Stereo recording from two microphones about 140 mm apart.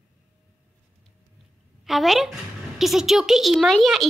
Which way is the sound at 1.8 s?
Centre (ahead or behind).